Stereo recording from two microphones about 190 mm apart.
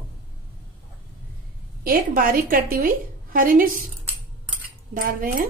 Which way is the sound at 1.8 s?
50° right (ahead or behind).